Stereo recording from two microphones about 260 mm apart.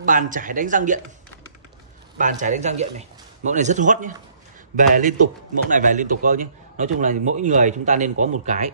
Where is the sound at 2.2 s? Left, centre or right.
Right.